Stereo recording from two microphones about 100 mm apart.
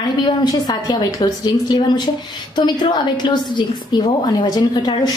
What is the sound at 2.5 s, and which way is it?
A woman's voice, 45° left (ahead or behind).